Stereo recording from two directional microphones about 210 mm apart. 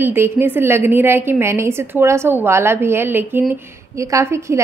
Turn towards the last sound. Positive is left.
turn(degrees=-15)  # may be behind; listen again after turning